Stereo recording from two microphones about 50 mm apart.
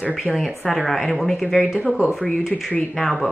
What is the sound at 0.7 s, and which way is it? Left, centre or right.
Speech, centre.